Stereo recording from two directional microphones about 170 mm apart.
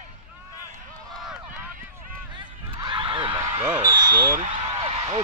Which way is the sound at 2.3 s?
25° right (ahead or behind).